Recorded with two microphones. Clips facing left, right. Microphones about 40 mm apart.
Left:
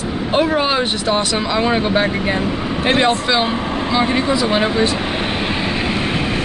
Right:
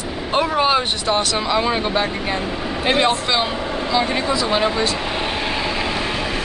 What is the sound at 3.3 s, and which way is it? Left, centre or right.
Vehicle, centre.